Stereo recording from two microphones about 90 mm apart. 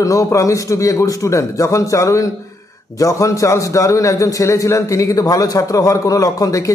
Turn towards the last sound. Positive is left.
turn(degrees=40)  # may be behind; listen again after turning